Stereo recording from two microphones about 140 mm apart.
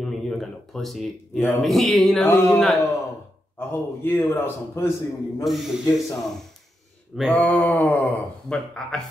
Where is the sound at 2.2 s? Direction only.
15° left (ahead or behind).